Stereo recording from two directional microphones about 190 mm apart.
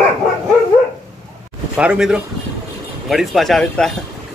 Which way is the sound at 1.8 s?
5° right (ahead or behind).